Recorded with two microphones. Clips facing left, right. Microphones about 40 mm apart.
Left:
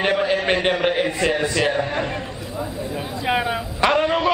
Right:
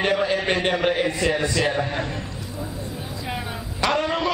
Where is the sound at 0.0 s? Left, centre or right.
Centre.